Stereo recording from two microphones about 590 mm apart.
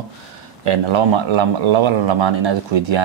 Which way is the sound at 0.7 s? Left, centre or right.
Right.